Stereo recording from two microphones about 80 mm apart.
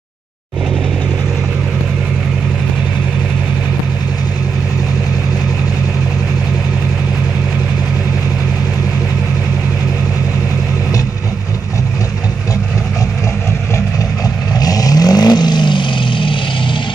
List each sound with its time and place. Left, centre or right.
14.6 s vehicle: left